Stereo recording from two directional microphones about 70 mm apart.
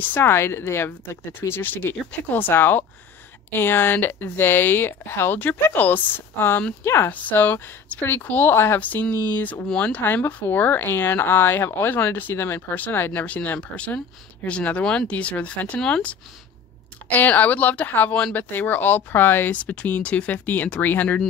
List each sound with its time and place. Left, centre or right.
0.0 s speech: left
7.1 s speech: left